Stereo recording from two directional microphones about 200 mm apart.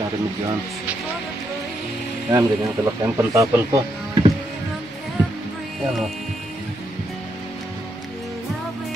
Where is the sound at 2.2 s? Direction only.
15° right (ahead or behind).